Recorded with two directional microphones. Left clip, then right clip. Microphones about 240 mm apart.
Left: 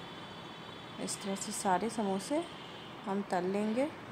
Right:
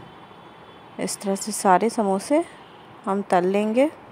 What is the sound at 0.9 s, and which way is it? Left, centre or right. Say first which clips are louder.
A woman's voice: right 13 dB; right.